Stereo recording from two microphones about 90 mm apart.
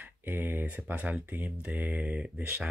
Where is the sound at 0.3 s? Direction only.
25° right (ahead or behind).